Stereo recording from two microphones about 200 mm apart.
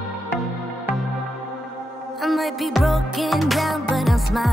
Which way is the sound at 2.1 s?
Centre (ahead or behind).